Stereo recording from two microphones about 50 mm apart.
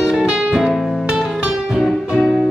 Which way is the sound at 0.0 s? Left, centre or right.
Centre.